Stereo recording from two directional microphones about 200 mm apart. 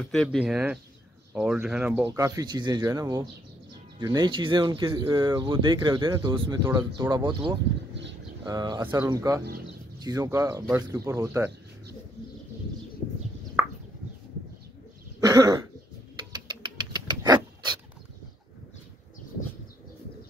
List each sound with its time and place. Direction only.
0.0 s speech: 5° left (ahead or behind); by 11.5 s 15° right (ahead or behind)
15.1 s cough: 20° right (ahead or behind)
16.3 s rodents: 20° right (ahead or behind)